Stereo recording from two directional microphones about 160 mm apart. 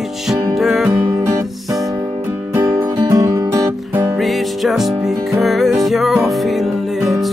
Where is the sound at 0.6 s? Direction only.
Centre (ahead or behind).